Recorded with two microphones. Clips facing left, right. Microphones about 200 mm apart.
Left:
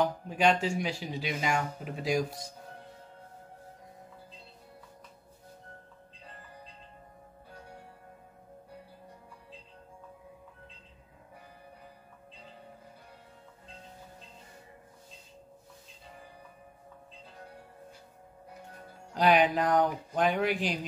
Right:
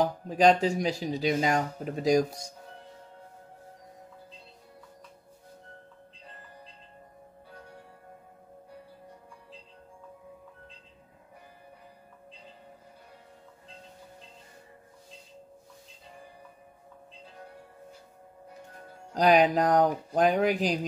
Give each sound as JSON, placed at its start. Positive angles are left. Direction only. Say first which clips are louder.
{"t": 0.0, "sound": "speech", "louder": "right 4 dB", "side_deg": -35}
{"t": 19.1, "sound": "speech", "louder": "right 3 dB", "side_deg": -40}